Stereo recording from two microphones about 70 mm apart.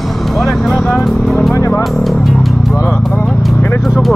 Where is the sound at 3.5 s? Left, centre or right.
Left.